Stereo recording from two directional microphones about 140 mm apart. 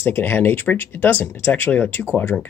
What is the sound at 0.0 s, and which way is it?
Speech, 15° left (ahead or behind).